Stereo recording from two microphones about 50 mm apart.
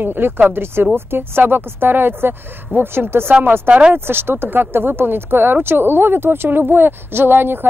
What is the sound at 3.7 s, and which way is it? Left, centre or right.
Speech, centre.